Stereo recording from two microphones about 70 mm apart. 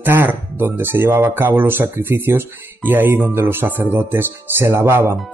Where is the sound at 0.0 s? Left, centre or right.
Right.